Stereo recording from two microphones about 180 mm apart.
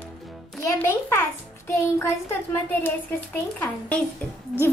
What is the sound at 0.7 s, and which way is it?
Speech, 15° left (ahead or behind).